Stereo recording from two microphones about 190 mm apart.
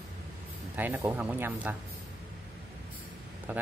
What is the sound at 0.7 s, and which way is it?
Speech, 10° right (ahead or behind).